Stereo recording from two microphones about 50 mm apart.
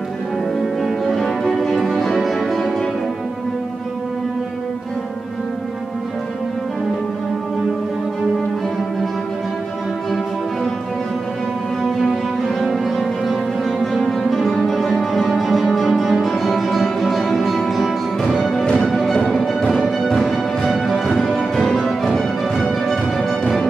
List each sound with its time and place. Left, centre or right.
0.6 s music: centre
12.0 s music: centre